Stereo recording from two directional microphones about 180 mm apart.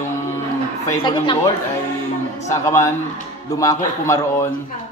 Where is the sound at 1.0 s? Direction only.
25° left (ahead or behind).